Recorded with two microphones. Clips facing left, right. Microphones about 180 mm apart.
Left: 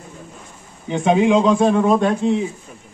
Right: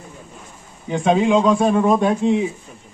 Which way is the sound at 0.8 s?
20° left (ahead or behind).